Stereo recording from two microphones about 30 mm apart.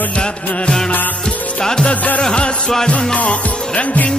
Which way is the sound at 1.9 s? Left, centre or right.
Left.